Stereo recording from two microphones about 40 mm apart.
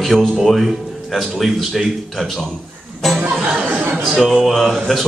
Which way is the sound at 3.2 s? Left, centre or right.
Right.